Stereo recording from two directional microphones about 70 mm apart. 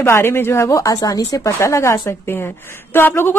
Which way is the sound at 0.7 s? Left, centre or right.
Left.